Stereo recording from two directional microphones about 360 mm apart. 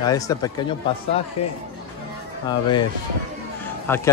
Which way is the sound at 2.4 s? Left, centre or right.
Centre.